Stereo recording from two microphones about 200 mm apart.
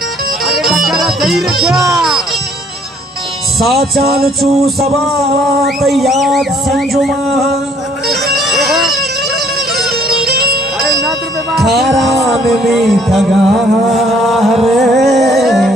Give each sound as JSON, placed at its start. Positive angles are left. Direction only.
{"t": 0.5, "sound": "music", "side_deg": 0}
{"t": 3.5, "sound": "a sound", "side_deg": 0}
{"t": 8.1, "sound": "music", "side_deg": 0}
{"t": 10.0, "sound": "music", "side_deg": -50}
{"t": 10.8, "sound": "music", "side_deg": 0}